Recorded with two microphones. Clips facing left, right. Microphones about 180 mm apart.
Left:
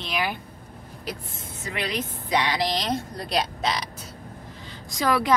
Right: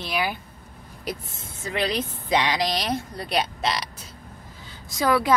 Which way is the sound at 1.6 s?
35° right (ahead or behind).